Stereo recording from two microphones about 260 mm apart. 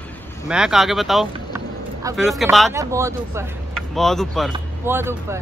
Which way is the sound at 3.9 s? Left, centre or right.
Centre.